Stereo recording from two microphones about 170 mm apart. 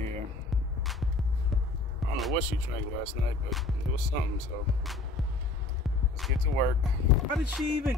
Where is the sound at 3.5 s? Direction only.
Centre (ahead or behind).